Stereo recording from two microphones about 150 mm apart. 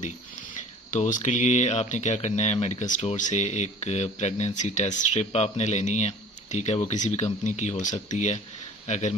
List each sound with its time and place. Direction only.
0.6 s a man's voice: 60° left (ahead or behind)